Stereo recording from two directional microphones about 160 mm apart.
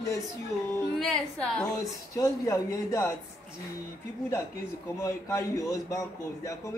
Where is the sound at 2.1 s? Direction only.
20° left (ahead or behind).